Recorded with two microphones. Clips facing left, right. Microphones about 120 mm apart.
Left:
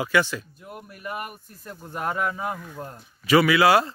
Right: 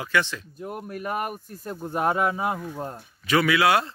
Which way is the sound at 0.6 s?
40° right (ahead or behind).